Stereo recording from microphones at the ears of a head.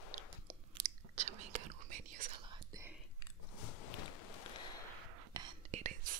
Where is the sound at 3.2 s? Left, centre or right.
Left.